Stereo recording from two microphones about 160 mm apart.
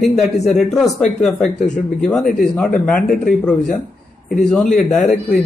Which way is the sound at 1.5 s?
50° left (ahead or behind).